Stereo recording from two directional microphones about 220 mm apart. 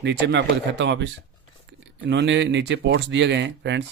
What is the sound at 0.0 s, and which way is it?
Speech, 55° right (ahead or behind).